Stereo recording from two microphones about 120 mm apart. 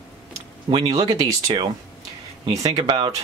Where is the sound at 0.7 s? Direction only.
45° right (ahead or behind).